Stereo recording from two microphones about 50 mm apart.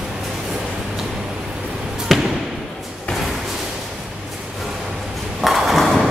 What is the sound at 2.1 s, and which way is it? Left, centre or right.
Basketball bounce, centre.